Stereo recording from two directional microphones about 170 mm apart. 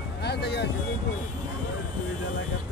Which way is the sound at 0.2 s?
75° left (ahead or behind).